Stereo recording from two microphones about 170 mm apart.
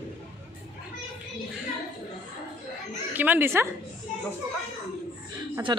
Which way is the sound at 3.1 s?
10° right (ahead or behind).